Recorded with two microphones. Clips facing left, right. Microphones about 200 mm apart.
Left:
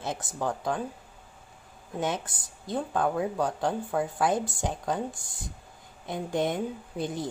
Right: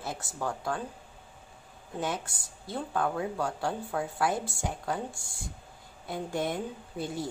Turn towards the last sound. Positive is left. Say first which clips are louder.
# left 2 dB
turn(degrees=20)  # may be behind; listen again after turning